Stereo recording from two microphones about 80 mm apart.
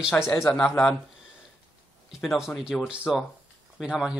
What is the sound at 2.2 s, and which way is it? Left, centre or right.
Speech, centre.